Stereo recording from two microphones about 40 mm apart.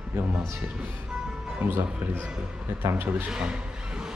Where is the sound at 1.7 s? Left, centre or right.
Right.